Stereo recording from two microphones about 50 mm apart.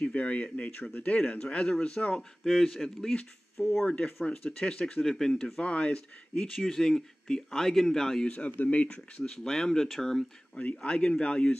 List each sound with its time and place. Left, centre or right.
0.0 s speech: left
2.4 s speech: centre
3.8 s speech: left
5.6 s speech: left
6.4 s speech: centre
8.3 s speech: left
9.2 s speech: centre
10.6 s speech: left
10.9 s speech: centre